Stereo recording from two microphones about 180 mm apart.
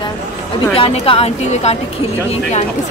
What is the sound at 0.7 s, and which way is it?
Speech, 30° left (ahead or behind).